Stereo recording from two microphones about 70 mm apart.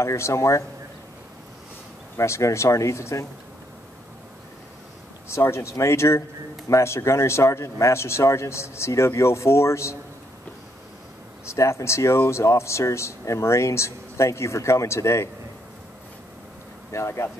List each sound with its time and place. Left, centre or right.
0.0 s speech: left
2.1 s speech: left
5.3 s speech: left
11.4 s speech: left
16.9 s speech: left